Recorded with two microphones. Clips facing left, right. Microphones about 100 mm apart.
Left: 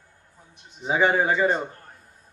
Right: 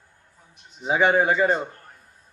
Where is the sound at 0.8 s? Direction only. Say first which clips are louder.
Right 1 dB; 15° right (ahead or behind).